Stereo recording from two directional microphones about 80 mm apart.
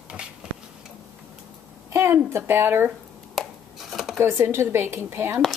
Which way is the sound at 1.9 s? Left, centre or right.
Right.